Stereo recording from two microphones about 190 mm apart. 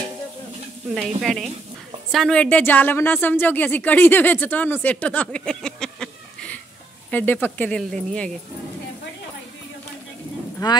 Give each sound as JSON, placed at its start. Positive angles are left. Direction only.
{"t": 0.9, "sound": "stir", "side_deg": 0}
{"t": 2.1, "sound": "speech", "side_deg": 5}
{"t": 10.6, "sound": "speech", "side_deg": 20}